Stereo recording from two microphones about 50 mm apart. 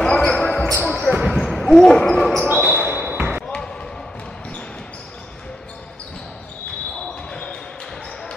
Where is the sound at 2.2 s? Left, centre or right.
Centre.